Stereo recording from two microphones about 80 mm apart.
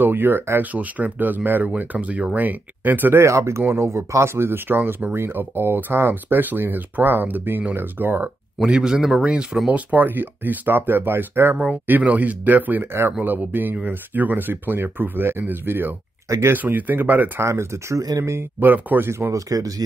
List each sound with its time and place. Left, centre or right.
0.0 s speech: right
3.3 s speech: right
8.5 s speech: centre; by 11.5 s right
11.5 s speech: centre
17.5 s speech: right
18.6 s speech: right
19.3 s speech: right